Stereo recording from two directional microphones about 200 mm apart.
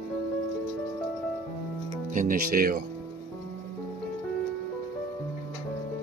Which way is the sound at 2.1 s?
40° right (ahead or behind).